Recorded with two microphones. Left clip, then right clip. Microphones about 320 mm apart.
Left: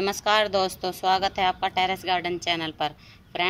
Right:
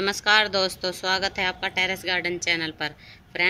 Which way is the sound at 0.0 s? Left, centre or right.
Left.